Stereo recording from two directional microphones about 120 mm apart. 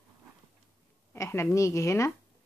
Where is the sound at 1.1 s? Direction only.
20° left (ahead or behind).